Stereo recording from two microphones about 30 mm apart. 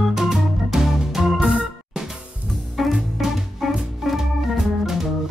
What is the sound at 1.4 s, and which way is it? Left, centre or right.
Organ, centre.